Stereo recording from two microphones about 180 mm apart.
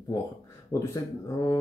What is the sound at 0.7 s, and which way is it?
Speech, 20° left (ahead or behind).